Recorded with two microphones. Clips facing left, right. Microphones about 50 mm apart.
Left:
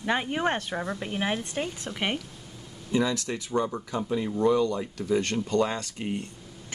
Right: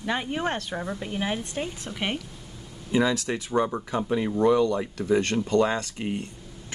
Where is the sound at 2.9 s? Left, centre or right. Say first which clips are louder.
Right 3 dB; right.